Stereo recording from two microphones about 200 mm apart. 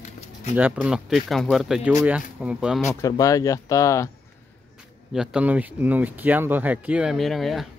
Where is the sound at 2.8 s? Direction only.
15° left (ahead or behind).